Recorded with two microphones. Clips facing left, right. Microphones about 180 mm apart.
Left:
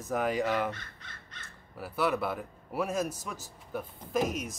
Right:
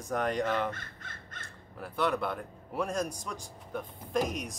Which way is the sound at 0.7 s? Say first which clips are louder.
Right 2 dB; 50° right (ahead or behind).